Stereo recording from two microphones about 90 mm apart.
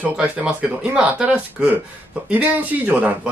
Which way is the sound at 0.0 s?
15° right (ahead or behind).